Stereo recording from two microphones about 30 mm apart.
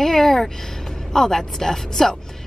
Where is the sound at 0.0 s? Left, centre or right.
Centre.